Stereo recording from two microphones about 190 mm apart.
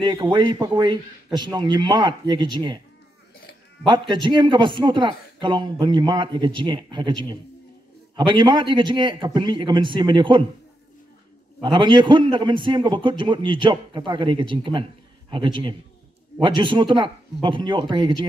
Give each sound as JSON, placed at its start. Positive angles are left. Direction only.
{"t": 0.0, "sound": "speech", "side_deg": -25}
{"t": 3.8, "sound": "speech", "side_deg": -25}
{"t": 11.6, "sound": "speech", "side_deg": -25}